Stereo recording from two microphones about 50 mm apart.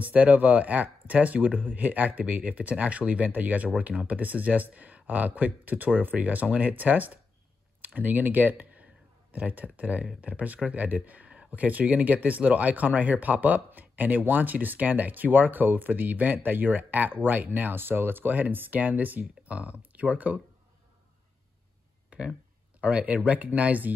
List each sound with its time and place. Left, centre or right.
0.0 s speech: right
22.1 s speech: right